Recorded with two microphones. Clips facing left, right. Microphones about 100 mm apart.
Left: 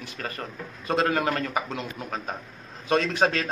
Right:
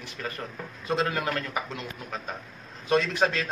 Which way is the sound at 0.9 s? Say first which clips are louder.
Left 3 dB; 45° left (ahead or behind).